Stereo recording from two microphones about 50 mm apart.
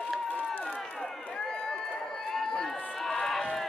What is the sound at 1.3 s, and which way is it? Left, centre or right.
Run, centre.